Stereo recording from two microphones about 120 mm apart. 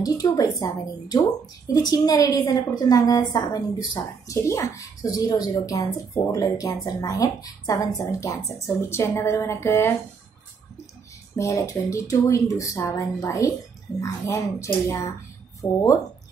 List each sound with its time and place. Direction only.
0.0 s a woman's voice: 30° left (ahead or behind)
11.3 s a woman's voice: 25° left (ahead or behind)